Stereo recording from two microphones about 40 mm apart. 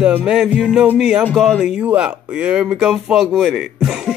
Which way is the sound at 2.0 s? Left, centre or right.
Right.